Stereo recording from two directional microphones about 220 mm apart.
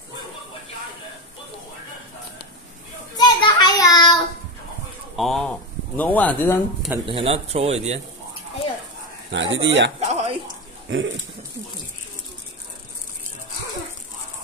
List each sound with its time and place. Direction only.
3.2 s child singing: 20° left (ahead or behind)
5.1 s a sound: centre (ahead or behind)
7.1 s speech: 25° right (ahead or behind)
9.3 s speech: 55° right (ahead or behind)
9.9 s a sound: 30° right (ahead or behind)
10.9 s speech: 55° right (ahead or behind)